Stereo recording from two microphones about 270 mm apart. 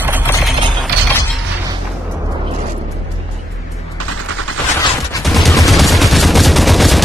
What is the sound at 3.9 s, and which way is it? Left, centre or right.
Fusillade, right.